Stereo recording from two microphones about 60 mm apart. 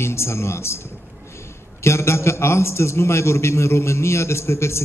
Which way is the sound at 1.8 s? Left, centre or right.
Left.